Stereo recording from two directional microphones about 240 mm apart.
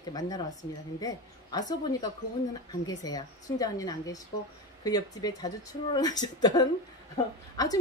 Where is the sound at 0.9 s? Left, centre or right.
Centre.